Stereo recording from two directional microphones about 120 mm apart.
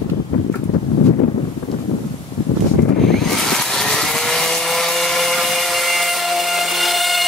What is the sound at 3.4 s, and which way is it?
Vehicle, 5° left (ahead or behind).